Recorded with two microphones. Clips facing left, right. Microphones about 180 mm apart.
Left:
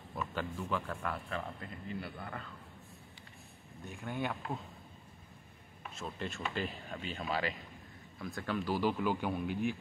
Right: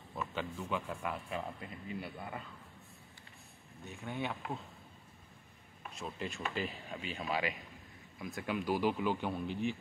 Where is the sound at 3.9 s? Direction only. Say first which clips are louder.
Left 2 dB; centre (ahead or behind).